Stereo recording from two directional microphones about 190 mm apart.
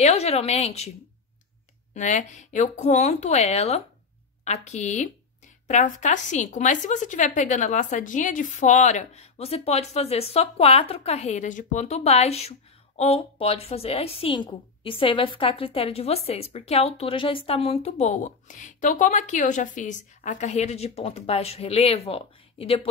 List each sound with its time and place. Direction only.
0.0 s a woman's voice: 35° left (ahead or behind)
2.0 s a woman's voice: 40° left (ahead or behind)